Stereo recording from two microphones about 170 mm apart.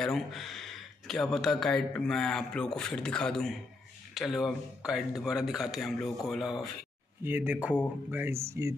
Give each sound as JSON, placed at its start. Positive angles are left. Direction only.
{"t": 0.0, "sound": "speech", "side_deg": 0}
{"t": 7.2, "sound": "speech", "side_deg": -10}